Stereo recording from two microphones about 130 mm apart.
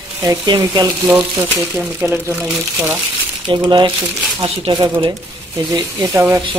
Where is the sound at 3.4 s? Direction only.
35° right (ahead or behind).